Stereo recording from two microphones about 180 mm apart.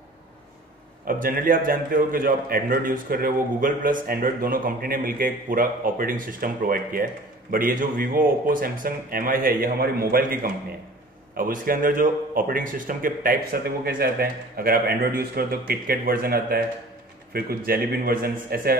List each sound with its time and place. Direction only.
1.0 s a man's voice: 50° right (ahead or behind)